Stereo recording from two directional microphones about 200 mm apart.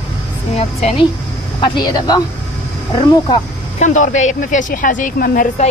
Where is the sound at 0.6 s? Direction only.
30° left (ahead or behind).